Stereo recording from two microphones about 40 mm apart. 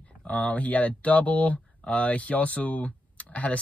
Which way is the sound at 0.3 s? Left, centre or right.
Left.